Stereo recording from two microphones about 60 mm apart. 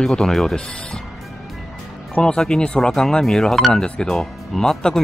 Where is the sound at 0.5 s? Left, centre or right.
Centre.